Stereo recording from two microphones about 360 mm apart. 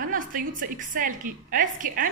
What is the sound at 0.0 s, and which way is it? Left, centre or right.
A woman's voice, right.